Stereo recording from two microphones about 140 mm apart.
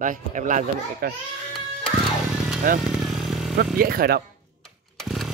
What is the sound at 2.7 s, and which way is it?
Speech, 80° right.